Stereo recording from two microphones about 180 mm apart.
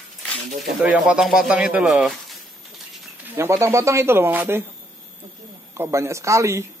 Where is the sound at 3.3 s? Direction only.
15° right (ahead or behind).